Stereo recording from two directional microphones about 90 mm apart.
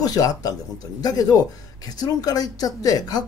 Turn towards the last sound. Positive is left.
turn(degrees=45)  # may be behind; listen again after turning